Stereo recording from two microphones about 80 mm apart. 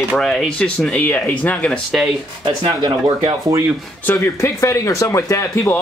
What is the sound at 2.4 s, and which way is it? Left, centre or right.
Speech, right.